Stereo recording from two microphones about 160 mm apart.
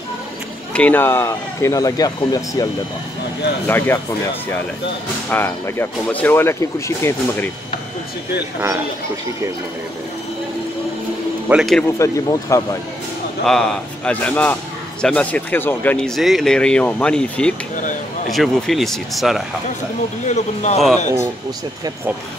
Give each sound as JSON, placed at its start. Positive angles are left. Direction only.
{"t": 0.7, "sound": "speech", "side_deg": 10}
{"t": 5.3, "sound": "speech", "side_deg": 15}
{"t": 11.4, "sound": "speech", "side_deg": 0}
{"t": 12.0, "sound": "speech", "side_deg": 20}
{"t": 13.5, "sound": "speech", "side_deg": 5}
{"t": 16.2, "sound": "speech", "side_deg": 0}
{"t": 20.2, "sound": "speech", "side_deg": 45}